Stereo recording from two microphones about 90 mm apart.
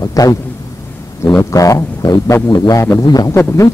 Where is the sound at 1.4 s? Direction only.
35° left (ahead or behind).